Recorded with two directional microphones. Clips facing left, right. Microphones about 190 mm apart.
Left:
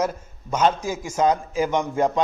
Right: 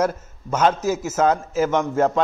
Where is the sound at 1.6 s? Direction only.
15° left (ahead or behind).